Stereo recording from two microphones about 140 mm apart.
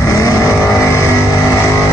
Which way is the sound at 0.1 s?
25° left (ahead or behind).